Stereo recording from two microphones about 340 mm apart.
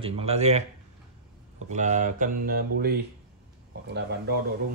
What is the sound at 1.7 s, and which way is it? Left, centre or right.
Speech, right.